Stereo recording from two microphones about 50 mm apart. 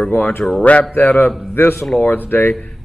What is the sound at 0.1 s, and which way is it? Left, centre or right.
Speech, left.